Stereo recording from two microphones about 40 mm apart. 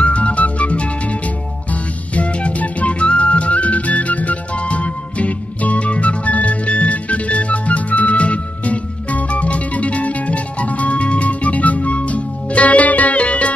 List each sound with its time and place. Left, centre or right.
0.0 s music: left